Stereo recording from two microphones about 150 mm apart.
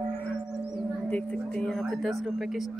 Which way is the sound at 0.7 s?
10° left (ahead or behind).